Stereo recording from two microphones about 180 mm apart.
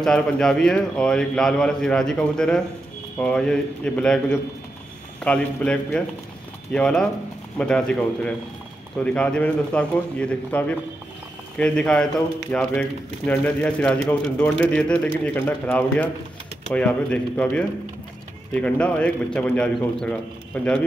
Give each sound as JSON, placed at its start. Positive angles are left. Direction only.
{"t": 0.0, "sound": "a man's voice", "side_deg": 5}